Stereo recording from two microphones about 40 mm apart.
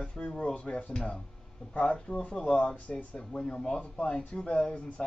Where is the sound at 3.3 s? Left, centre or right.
Centre.